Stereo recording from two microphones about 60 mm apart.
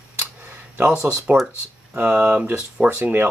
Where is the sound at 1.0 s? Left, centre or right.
Right.